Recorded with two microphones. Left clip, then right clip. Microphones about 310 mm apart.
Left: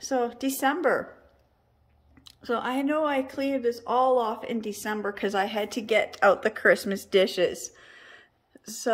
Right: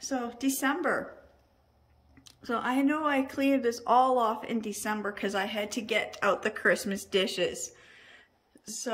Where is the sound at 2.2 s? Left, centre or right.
Centre.